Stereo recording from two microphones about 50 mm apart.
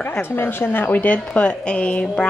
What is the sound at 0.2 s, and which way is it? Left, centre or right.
Speech, left.